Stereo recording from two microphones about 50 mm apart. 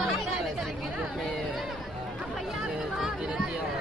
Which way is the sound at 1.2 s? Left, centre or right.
Centre.